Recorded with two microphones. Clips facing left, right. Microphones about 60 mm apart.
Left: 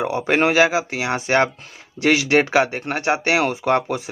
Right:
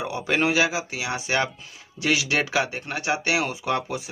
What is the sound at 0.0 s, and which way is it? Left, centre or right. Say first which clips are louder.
Speech: left 5 dB; left.